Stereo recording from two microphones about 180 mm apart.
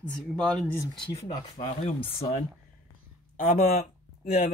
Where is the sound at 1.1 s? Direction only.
35° left (ahead or behind).